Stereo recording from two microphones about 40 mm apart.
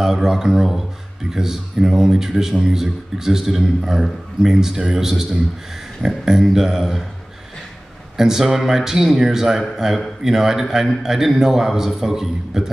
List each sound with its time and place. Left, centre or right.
0.0 s a man's voice: centre
8.2 s a man's voice: centre